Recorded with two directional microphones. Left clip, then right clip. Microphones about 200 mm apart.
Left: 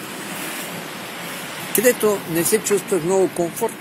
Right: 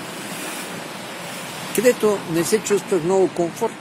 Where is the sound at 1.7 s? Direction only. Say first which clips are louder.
Even; 10° right (ahead or behind).